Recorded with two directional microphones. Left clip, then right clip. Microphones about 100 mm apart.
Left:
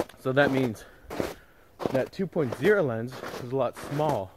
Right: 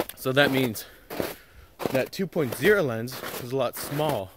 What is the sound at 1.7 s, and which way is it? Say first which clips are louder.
Speech: right 1 dB; 30° right (ahead or behind).